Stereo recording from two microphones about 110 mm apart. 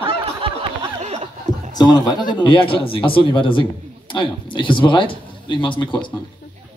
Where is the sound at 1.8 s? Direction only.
40° left (ahead or behind).